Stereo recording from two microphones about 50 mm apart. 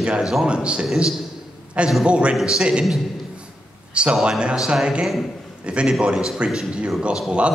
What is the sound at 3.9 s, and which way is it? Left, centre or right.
A man's voice, right.